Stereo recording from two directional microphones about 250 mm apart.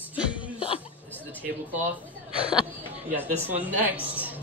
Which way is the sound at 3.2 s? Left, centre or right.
Centre.